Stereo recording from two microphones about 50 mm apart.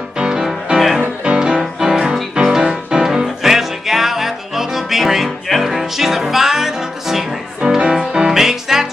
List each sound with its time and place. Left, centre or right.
0.2 s music: centre